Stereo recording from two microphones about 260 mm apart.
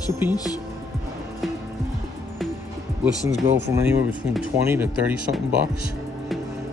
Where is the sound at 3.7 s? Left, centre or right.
Centre.